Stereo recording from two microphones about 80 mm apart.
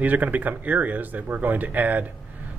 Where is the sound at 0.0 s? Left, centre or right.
Right.